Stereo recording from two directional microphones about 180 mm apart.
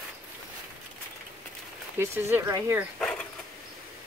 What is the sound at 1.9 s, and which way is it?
Speech, 10° right (ahead or behind).